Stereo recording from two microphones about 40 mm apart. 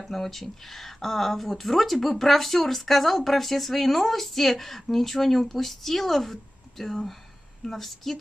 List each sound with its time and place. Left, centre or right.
0.0 s speech: centre